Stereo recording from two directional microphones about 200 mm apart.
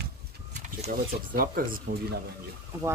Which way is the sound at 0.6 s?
40° right (ahead or behind).